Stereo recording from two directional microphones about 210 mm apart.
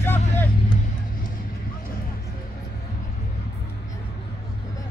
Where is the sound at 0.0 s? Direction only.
10° left (ahead or behind).